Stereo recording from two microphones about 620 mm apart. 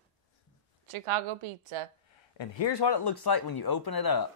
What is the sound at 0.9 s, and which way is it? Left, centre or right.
Speech, right.